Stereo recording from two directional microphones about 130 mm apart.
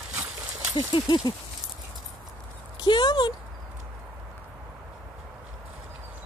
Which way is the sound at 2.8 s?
30° left (ahead or behind).